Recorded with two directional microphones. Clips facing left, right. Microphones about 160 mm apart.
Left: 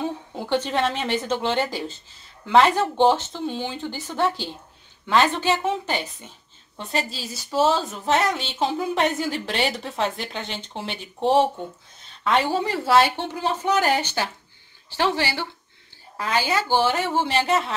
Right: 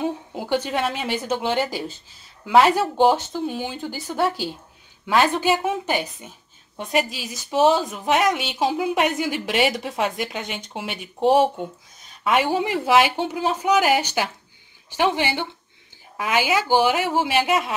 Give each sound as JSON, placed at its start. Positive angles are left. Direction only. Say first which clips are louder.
{"t": 0.0, "sound": "a woman's voice", "louder": "right 2 dB", "side_deg": -10}